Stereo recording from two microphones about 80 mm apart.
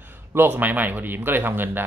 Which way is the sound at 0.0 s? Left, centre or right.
Right.